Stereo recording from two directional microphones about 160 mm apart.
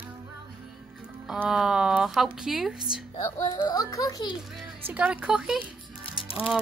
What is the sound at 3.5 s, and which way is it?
Speech, 25° left (ahead or behind).